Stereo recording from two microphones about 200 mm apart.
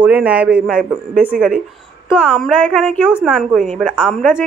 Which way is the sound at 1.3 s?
45° right (ahead or behind).